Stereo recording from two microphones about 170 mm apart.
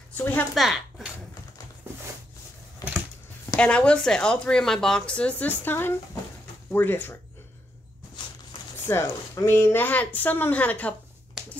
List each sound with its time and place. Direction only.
0.1 s a woman's voice: 10° left (ahead or behind)
0.6 s speech: centre (ahead or behind)
2.8 s a sound: 20° left (ahead or behind)
3.5 s speech: 5° left (ahead or behind)
8.8 s speech: 15° left (ahead or behind)
11.4 s a sound: 5° right (ahead or behind)